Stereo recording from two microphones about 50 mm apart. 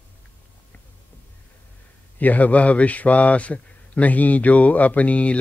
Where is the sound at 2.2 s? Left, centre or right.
Left.